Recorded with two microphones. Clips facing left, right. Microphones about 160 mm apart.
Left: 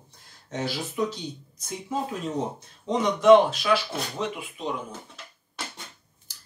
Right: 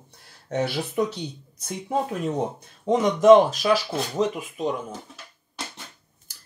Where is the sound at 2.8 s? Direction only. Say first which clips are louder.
Right 3 dB; 45° right (ahead or behind).